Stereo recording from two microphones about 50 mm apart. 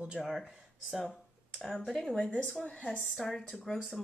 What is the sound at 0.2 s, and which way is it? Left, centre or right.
Speech, centre.